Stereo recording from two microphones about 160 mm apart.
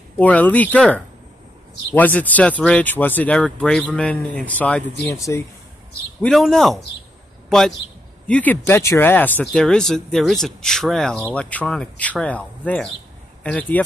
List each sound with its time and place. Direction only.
0.2 s speech: 10° left (ahead or behind)
6.2 s a man's voice: centre (ahead or behind)